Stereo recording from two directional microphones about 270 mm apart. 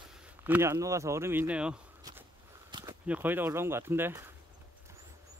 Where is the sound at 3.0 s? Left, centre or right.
Centre.